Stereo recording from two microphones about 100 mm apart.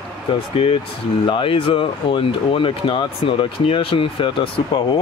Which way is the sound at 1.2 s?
55° left (ahead or behind).